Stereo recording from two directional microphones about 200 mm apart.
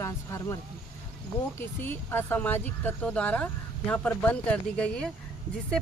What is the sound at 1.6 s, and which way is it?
Speech, 10° left (ahead or behind).